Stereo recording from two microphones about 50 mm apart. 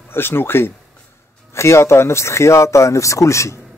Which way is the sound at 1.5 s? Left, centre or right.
Left.